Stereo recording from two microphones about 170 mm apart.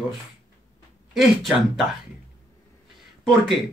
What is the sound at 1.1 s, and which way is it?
Speech, centre (ahead or behind).